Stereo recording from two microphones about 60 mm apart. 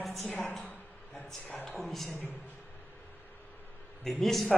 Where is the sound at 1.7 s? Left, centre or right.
Centre.